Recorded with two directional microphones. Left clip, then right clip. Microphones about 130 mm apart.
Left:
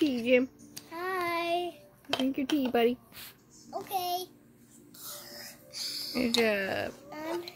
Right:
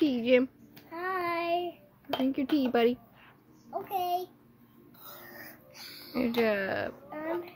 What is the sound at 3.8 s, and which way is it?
Speech, 20° left (ahead or behind).